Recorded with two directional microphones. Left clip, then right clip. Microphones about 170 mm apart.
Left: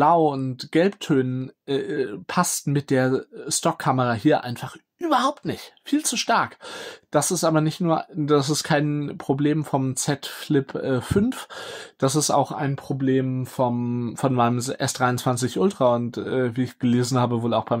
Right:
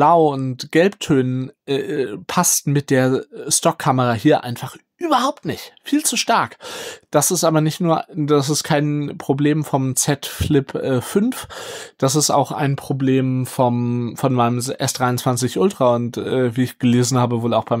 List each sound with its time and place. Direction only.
0.0 s speech: 30° right (ahead or behind)
12.5 s speech: 50° right (ahead or behind)
13.9 s speech: 25° right (ahead or behind)